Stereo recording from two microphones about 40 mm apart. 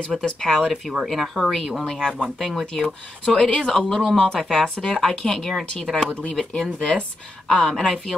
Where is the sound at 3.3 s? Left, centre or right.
Left; by 4.3 s centre.